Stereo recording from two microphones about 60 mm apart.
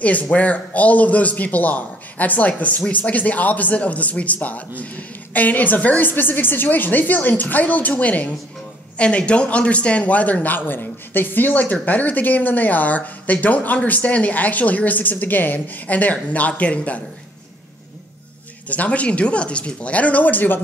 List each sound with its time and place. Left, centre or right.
0.0 s a man's voice: left
18.7 s a man's voice: left